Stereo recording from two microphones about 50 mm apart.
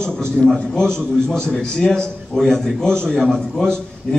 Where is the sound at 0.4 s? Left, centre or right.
Centre.